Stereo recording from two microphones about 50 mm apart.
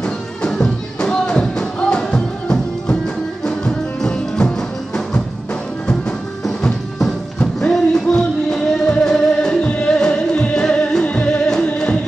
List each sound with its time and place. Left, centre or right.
0.0 s music: centre
6.4 s music: centre